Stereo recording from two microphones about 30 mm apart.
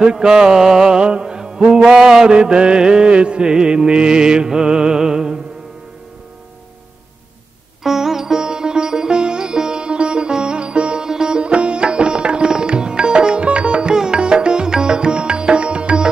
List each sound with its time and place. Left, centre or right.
0.0 s music: right
0.8 s mantra: right
1.9 s music: centre
2.2 s mantra: right
3.4 s music: right
7.8 s sitar: centre
8.4 s music: right
11.1 s sitar: right
13.5 s music: right